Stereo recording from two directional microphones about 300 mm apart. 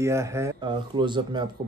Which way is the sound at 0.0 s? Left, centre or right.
Centre.